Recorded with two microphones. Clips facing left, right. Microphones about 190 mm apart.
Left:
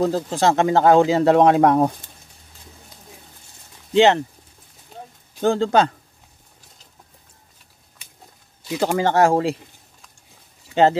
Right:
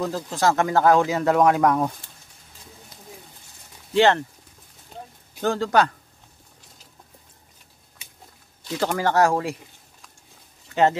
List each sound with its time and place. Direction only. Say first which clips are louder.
0.0 s speech: left 4 dB; 30° left (ahead or behind)
3.9 s speech: left 3 dB; 20° left (ahead or behind)
5.4 s speech: left 3 dB; 25° left (ahead or behind)
8.6 s speech: left 3 dB; 10° left (ahead or behind); by 9.6 s 30° left (ahead or behind)
10.7 s speech: left 3 dB; 30° left (ahead or behind)